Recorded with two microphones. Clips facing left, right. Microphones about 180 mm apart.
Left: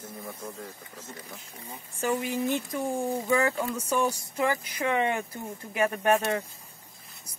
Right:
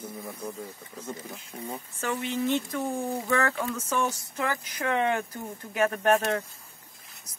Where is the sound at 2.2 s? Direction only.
10° left (ahead or behind).